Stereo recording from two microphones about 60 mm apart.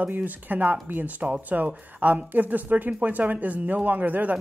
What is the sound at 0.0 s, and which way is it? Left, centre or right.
Speech, right.